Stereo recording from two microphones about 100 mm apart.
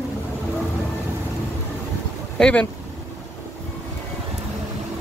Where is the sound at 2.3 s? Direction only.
10° left (ahead or behind).